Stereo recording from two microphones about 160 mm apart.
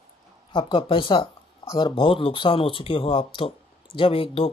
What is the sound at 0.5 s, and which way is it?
Speech, 30° left (ahead or behind).